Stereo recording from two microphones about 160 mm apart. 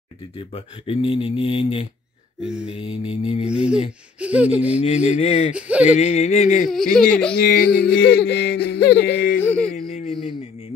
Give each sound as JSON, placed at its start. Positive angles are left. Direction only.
{"t": 0.4, "sound": "speech", "side_deg": 35}
{"t": 2.4, "sound": "speech", "side_deg": -5}
{"t": 2.7, "sound": "speech", "side_deg": 35}
{"t": 3.4, "sound": "speech", "side_deg": -5}
{"t": 4.7, "sound": "a sound", "side_deg": 45}
{"t": 5.5, "sound": "speech", "side_deg": -10}
{"t": 5.9, "sound": "a sound", "side_deg": 45}
{"t": 6.7, "sound": "speech", "side_deg": 0}
{"t": 7.3, "sound": "yodeling", "side_deg": 70}
{"t": 9.4, "sound": "a sound", "side_deg": 10}